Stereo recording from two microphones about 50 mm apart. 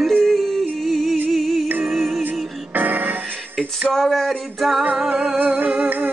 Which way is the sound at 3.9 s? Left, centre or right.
Centre.